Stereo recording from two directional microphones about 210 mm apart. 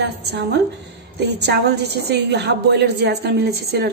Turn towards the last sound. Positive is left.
turn(degrees=-50)  # may be behind; listen again after turning